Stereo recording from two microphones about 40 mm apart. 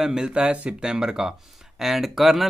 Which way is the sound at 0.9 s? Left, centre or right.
Centre.